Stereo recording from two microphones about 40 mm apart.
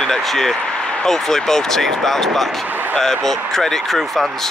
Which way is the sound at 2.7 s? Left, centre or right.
Right.